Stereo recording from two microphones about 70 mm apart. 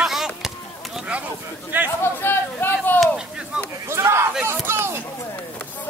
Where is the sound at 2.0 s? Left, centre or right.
Left.